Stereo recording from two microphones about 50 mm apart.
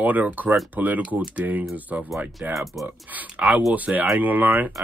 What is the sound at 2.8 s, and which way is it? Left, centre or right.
Speech, right.